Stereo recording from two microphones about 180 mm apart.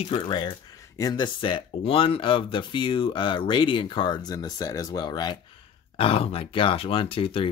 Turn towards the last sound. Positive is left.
turn(degrees=30)  # may be behind; listen again after turning